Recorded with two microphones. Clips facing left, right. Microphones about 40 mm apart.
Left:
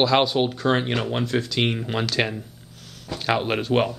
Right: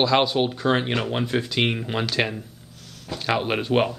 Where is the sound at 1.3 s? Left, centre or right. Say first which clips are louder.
Even; centre.